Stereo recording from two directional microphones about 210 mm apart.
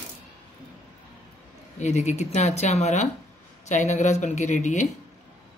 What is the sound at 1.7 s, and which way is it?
Speech, 35° left (ahead or behind).